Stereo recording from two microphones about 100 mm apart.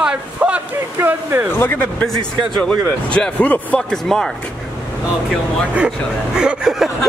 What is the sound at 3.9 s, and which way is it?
Speech, 5° left (ahead or behind).